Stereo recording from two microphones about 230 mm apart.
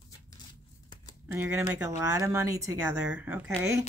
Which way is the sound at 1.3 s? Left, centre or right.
Centre.